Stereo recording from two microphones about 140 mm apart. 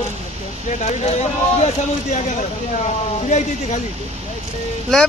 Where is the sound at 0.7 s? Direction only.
55° left (ahead or behind).